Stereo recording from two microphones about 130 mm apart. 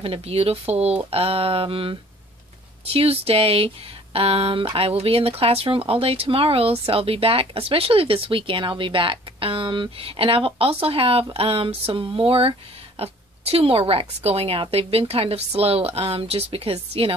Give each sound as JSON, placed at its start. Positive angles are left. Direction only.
{"t": 0.0, "sound": "speech", "side_deg": -45}